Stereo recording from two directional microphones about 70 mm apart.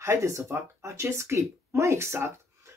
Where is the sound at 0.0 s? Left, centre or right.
Right.